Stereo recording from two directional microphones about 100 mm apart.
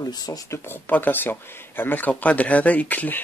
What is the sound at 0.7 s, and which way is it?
Speech, 20° left (ahead or behind).